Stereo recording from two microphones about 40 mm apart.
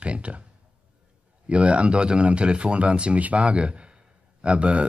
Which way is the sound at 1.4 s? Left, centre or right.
Right.